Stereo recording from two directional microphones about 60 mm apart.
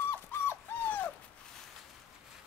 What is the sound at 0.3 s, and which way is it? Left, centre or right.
Dog, left.